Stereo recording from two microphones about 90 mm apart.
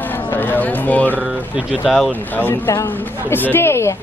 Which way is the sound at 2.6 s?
35° left (ahead or behind).